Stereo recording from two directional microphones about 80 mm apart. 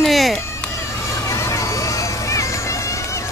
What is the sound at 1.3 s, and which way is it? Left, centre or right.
Run, left.